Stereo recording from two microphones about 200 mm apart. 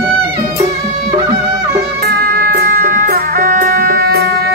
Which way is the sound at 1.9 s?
50° right (ahead or behind).